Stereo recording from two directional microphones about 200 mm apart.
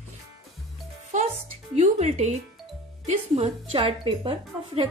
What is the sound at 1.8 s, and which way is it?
A woman's voice, 35° right (ahead or behind).